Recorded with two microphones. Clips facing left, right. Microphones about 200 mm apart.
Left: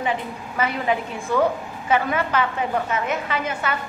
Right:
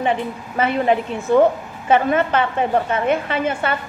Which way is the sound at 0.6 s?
25° right (ahead or behind).